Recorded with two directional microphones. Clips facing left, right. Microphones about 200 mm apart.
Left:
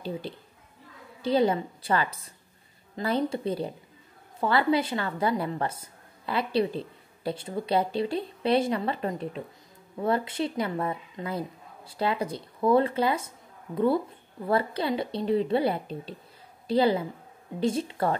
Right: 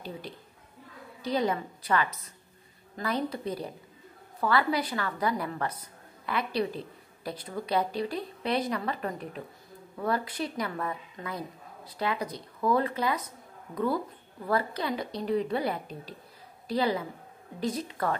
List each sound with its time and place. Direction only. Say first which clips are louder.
1.2 s a woman's voice: left 5 dB; 30° left (ahead or behind)